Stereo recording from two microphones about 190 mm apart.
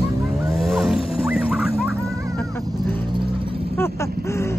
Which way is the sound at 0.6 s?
Centre (ahead or behind).